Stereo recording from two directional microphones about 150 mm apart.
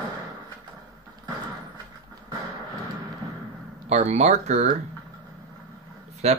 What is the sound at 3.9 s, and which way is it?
Speech, 50° right (ahead or behind).